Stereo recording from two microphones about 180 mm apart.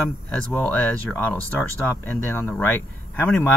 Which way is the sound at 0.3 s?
10° left (ahead or behind).